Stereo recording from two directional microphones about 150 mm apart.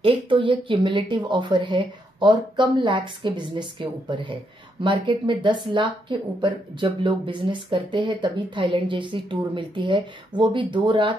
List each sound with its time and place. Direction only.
0.0 s a woman's voice: 35° right (ahead or behind)